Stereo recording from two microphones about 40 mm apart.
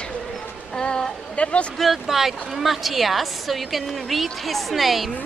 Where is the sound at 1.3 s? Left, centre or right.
Left.